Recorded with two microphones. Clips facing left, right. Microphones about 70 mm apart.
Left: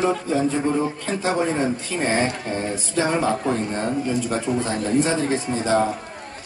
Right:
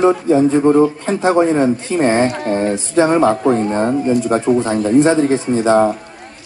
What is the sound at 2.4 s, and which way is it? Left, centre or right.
Speech, right.